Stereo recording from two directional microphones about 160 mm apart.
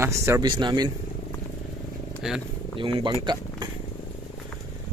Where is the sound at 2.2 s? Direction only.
Centre (ahead or behind).